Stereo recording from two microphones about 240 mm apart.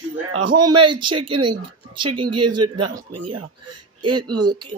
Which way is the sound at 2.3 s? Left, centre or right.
Right.